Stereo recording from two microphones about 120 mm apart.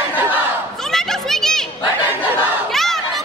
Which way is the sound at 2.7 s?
Centre (ahead or behind).